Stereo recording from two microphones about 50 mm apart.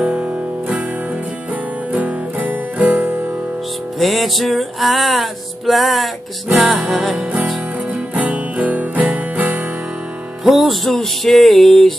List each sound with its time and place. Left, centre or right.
0.0 s music: right
1.9 s music: right
4.0 s music: centre
7.9 s music: right
10.4 s music: centre